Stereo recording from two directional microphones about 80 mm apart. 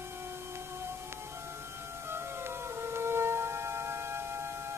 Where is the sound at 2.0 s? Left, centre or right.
Right.